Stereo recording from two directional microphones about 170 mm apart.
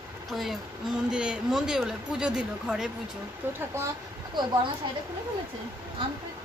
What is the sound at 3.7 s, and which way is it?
Speech, 15° right (ahead or behind).